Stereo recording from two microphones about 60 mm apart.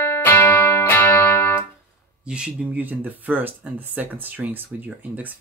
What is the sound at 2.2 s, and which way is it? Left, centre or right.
Speech, centre.